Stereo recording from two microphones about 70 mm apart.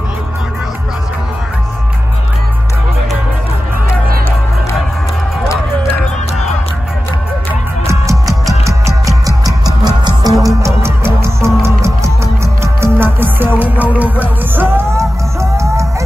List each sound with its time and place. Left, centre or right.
7.8 s music: right
9.8 s music: right
11.1 s music: right
15.5 s music: right